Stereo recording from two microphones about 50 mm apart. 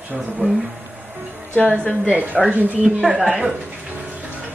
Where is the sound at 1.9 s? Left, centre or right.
Right.